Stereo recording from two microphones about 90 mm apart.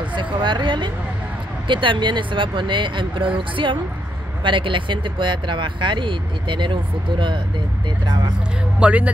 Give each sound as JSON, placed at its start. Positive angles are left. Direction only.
{"t": 0.1, "sound": "speech", "side_deg": -65}
{"t": 8.7, "sound": "speech", "side_deg": -15}